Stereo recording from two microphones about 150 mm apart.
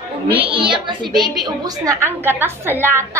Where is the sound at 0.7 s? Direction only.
30° right (ahead or behind).